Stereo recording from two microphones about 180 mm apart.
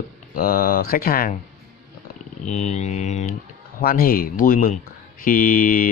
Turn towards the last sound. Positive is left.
turn(degrees=50)  # may be behind; listen again after turning